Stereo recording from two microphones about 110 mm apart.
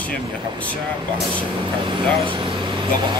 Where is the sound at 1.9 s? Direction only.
45° right (ahead or behind).